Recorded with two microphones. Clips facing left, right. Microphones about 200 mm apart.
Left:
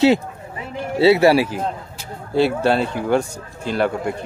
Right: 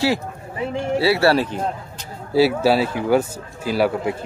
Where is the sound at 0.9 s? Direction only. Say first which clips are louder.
Left 4 dB; 20° left (ahead or behind).